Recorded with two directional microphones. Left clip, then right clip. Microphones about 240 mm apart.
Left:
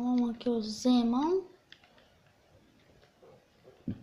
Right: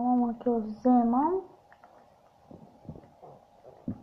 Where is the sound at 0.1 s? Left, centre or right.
Left.